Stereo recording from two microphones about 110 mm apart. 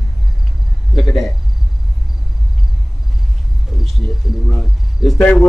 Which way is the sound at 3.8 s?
Centre (ahead or behind).